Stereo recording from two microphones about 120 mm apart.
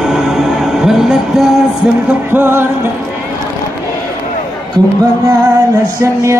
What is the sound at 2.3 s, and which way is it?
Music, 20° right (ahead or behind).